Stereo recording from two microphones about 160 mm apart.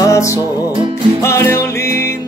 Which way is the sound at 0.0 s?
20° left (ahead or behind).